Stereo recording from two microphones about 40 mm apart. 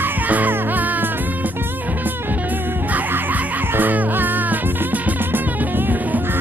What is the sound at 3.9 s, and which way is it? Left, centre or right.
Music, right.